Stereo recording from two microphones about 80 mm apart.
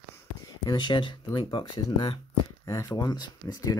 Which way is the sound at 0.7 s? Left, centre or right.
Left.